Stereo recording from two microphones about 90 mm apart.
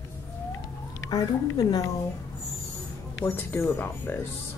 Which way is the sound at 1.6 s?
45° left (ahead or behind).